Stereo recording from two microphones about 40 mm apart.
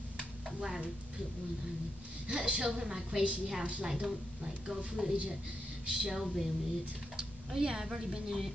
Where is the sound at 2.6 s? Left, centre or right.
Centre.